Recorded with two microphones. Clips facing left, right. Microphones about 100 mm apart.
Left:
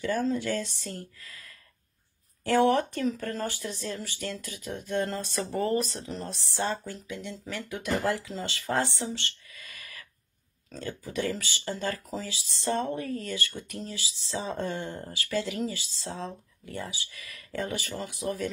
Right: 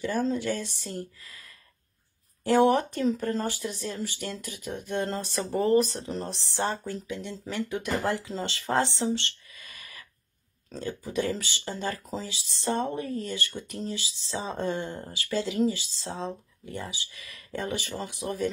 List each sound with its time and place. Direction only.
0.0 s speech: 20° right (ahead or behind)
2.4 s speech: 20° right (ahead or behind)